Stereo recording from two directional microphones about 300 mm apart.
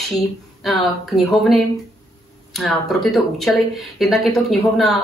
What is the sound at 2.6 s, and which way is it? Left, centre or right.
A woman's voice, centre.